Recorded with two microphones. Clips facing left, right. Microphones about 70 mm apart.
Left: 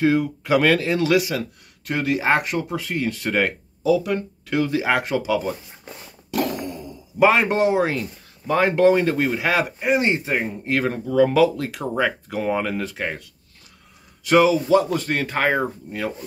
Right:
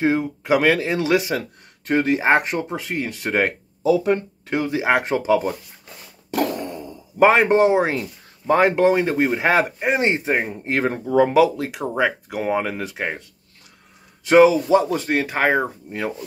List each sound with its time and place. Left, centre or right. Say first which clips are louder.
0.0 s speech: left 1 dB; right
7.2 s speech: right 3 dB; right
14.2 s speech: right 3 dB; right